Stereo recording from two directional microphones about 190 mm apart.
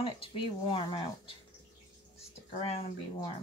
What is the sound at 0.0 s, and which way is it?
Speech, 30° left (ahead or behind).